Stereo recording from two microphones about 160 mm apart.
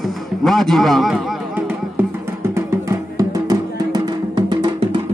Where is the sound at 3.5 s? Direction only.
25° right (ahead or behind).